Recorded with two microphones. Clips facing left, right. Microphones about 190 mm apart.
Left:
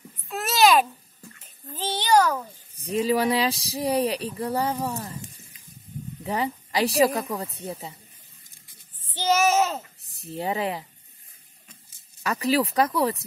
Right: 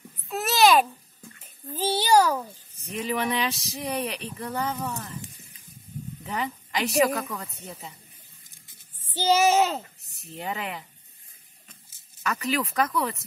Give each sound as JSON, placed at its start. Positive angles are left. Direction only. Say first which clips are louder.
{"t": 0.3, "sound": "babbling", "louder": "even", "side_deg": 0}
{"t": 1.7, "sound": "a sound", "louder": "right 1 dB", "side_deg": -10}
{"t": 2.7, "sound": "speech", "louder": "left 7 dB", "side_deg": 35}
{"t": 6.2, "sound": "speech", "louder": "left 5 dB", "side_deg": 35}
{"t": 9.1, "sound": "child singing", "louder": "right 1 dB", "side_deg": -10}
{"t": 10.0, "sound": "speech", "louder": "left 9 dB", "side_deg": 35}
{"t": 12.2, "sound": "speech", "louder": "left 5 dB", "side_deg": 35}